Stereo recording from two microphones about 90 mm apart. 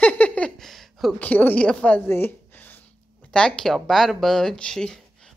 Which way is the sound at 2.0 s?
25° left (ahead or behind).